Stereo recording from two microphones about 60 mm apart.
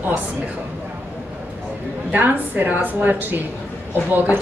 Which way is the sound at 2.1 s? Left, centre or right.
Right.